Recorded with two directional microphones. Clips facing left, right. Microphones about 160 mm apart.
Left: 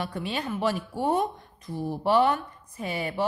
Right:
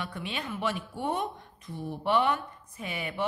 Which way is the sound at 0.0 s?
40° left (ahead or behind).